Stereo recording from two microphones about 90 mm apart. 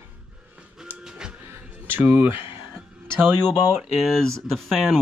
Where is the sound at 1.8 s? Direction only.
25° right (ahead or behind).